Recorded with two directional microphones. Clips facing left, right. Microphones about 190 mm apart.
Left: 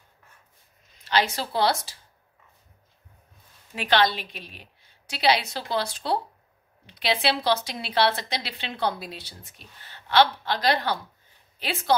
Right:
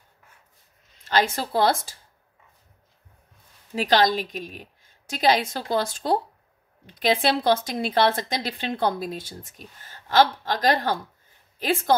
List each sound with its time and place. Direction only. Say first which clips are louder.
1.0 s speech: right 2 dB; 50° right (ahead or behind)
3.7 s speech: right 3 dB; 40° right (ahead or behind)